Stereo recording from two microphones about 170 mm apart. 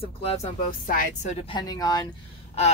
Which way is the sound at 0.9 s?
50° left (ahead or behind).